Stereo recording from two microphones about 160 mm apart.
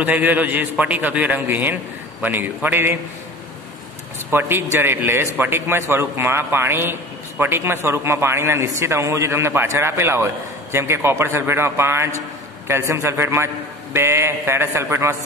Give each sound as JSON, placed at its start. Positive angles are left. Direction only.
{"t": 0.0, "sound": "a man's voice", "side_deg": -10}
{"t": 4.3, "sound": "a man's voice", "side_deg": -15}